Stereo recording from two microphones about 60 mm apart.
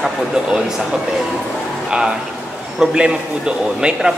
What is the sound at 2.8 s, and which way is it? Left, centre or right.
A man's voice, centre.